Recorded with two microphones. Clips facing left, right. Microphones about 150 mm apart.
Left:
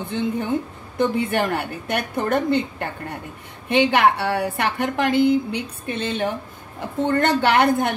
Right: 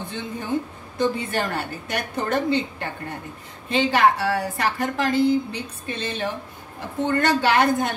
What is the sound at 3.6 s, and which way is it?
A woman's voice, 65° left (ahead or behind).